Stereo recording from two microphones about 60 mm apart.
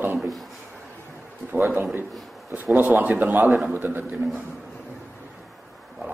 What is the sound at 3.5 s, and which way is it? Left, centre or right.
Speech, centre.